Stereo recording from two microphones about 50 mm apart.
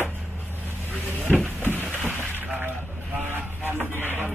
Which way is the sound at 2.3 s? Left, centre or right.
Right.